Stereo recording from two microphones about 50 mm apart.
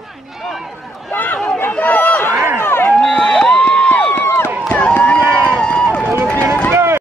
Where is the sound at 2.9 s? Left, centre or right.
Centre.